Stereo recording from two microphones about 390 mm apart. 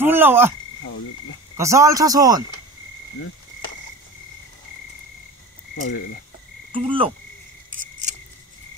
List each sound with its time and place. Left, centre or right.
0.0 s speech: centre
1.6 s speech: centre
5.8 s frog: left
6.7 s insect: centre